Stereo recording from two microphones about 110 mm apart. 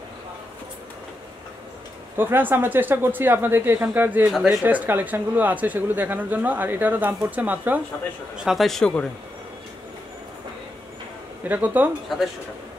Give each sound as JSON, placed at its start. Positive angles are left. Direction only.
{"t": 2.1, "sound": "speech", "side_deg": -20}
{"t": 4.3, "sound": "speech", "side_deg": -5}
{"t": 4.6, "sound": "speech", "side_deg": -15}
{"t": 8.5, "sound": "speech", "side_deg": 0}
{"t": 11.4, "sound": "speech", "side_deg": -15}
{"t": 12.1, "sound": "speech", "side_deg": 0}